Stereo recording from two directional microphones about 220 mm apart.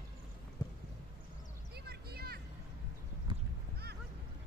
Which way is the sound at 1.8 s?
45° right (ahead or behind).